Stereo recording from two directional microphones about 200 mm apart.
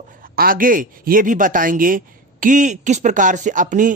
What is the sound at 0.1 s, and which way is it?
A man's voice, 45° right (ahead or behind).